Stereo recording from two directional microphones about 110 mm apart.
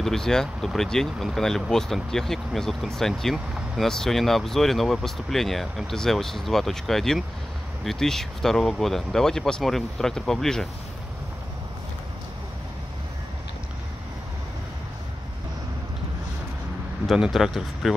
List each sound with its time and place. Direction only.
0.0 s speech: 5° left (ahead or behind)
17.0 s speech: centre (ahead or behind)